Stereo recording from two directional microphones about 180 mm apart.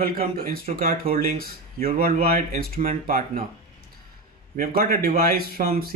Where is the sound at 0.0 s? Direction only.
55° right (ahead or behind).